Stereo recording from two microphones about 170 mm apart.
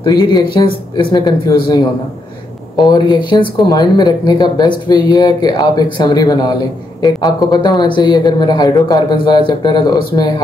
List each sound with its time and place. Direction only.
0.0 s speech: 25° left (ahead or behind)
2.9 s speech: 25° left (ahead or behind)